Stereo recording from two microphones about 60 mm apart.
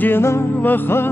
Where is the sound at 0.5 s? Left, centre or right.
Left.